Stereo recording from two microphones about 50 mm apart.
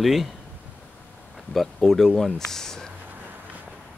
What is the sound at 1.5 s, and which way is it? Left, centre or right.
Speech, centre.